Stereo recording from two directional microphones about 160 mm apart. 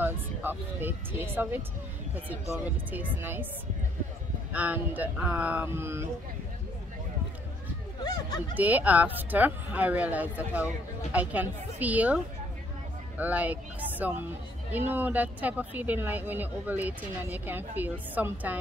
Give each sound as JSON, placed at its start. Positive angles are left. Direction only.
{"t": 0.0, "sound": "speech", "side_deg": -10}
{"t": 2.6, "sound": "speech", "side_deg": -10}
{"t": 4.5, "sound": "speech", "side_deg": -10}
{"t": 8.0, "sound": "speech", "side_deg": 25}
{"t": 8.5, "sound": "speech", "side_deg": -10}
{"t": 13.2, "sound": "speech", "side_deg": -10}